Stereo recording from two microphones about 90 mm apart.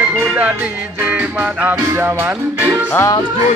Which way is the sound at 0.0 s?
25° right (ahead or behind).